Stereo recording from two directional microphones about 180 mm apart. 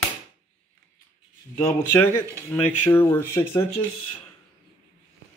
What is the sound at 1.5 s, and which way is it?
Speech, 10° left (ahead or behind).